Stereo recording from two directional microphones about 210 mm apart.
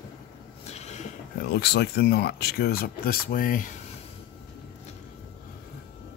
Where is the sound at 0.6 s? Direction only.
30° left (ahead or behind).